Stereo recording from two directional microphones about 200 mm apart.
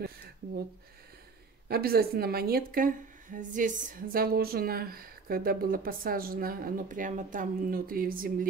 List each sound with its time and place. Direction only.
1.7 s a woman's voice: 50° right (ahead or behind)